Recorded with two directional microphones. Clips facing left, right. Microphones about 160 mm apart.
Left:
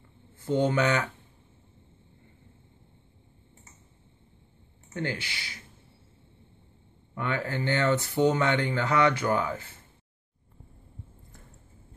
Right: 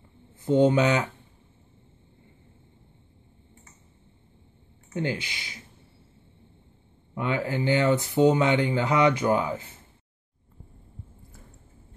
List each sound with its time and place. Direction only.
0.5 s speech: 20° right (ahead or behind)
4.9 s speech: 15° right (ahead or behind)
7.2 s speech: 15° right (ahead or behind)